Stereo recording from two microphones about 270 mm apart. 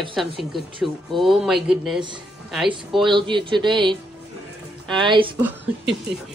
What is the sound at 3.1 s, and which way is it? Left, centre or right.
Speech, centre.